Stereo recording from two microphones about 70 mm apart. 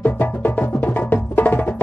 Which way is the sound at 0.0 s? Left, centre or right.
Left.